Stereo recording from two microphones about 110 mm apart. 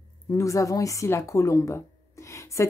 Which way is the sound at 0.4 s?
30° left (ahead or behind).